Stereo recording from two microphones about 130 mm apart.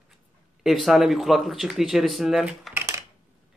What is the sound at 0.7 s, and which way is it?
Speech, centre (ahead or behind).